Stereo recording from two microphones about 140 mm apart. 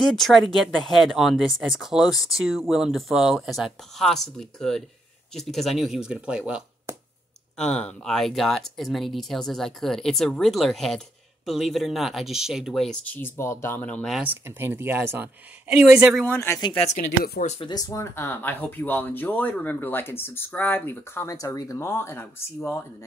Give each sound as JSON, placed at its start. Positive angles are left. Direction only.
{"t": 0.0, "sound": "speech", "side_deg": 0}
{"t": 7.5, "sound": "speech", "side_deg": 5}
{"t": 14.2, "sound": "speech", "side_deg": -15}
{"t": 16.3, "sound": "speech", "side_deg": 20}
{"t": 17.2, "sound": "speech", "side_deg": 65}
{"t": 17.6, "sound": "speech", "side_deg": 30}